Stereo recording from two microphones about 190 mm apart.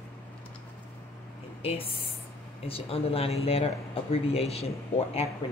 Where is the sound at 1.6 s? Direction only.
30° left (ahead or behind).